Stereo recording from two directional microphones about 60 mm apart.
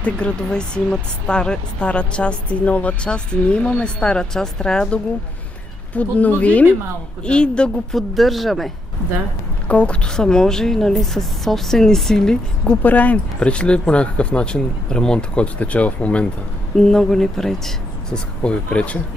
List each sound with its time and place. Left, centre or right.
0.0 s speech: centre
5.9 s speech: left
7.9 s speech: centre
9.7 s speech: centre
12.8 s speech: left
16.7 s speech: centre